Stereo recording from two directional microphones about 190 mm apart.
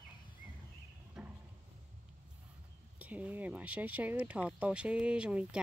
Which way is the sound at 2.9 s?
5° right (ahead or behind).